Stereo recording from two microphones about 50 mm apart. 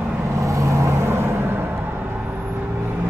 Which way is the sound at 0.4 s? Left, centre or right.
Right.